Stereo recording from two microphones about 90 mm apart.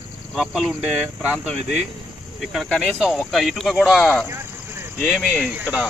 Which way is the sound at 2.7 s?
Centre (ahead or behind).